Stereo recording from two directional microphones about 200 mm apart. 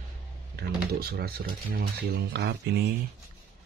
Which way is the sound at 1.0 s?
50° right (ahead or behind).